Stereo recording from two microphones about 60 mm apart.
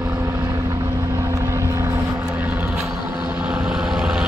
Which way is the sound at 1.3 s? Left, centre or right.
Right.